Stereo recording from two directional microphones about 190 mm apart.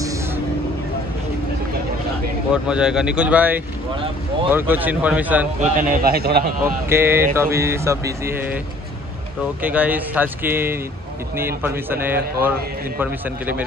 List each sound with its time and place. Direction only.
2.5 s a man's voice: 5° right (ahead or behind)
5.6 s a man's voice: 50° right (ahead or behind)
6.9 s a man's voice: 15° right (ahead or behind)
9.6 s a man's voice: 10° right (ahead or behind)